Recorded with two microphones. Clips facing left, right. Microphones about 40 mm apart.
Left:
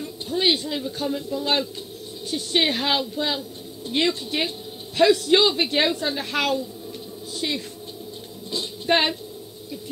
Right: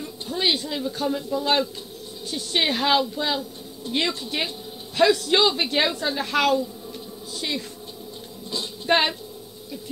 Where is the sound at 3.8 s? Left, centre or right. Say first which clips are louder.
Left 1 dB; left.